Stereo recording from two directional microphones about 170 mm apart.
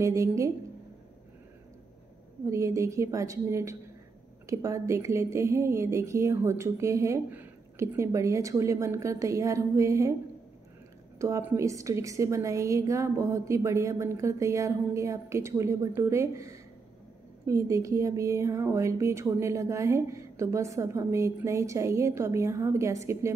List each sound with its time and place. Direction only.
0.0 s speech: 20° right (ahead or behind)
2.4 s speech: 15° right (ahead or behind)
11.1 s speech: 15° right (ahead or behind)